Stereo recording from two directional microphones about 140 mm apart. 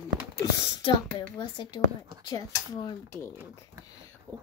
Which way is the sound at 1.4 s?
30° left (ahead or behind).